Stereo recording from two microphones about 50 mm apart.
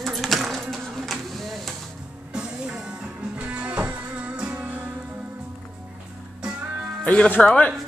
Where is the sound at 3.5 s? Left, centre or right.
Right.